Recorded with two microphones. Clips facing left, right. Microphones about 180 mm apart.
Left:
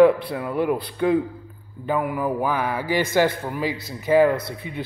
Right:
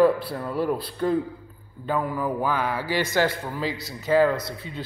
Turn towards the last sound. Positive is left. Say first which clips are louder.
# left 3 dB
turn(degrees=15)  # may be behind; listen again after turning